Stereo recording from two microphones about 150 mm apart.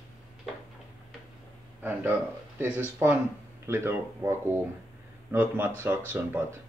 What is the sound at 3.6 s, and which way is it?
Speech, 15° right (ahead or behind).